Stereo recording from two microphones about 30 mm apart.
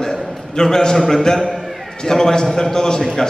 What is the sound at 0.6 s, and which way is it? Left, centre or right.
A man's voice, centre.